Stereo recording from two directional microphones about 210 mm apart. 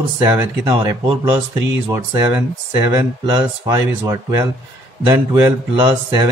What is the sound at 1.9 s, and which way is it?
Speech, 10° right (ahead or behind).